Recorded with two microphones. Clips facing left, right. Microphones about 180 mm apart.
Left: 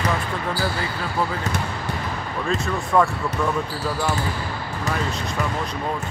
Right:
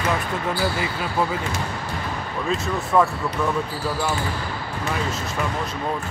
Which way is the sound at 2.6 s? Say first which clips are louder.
Even; centre (ahead or behind).